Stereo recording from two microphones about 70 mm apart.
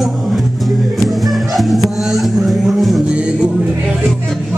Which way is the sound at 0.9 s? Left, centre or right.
Centre.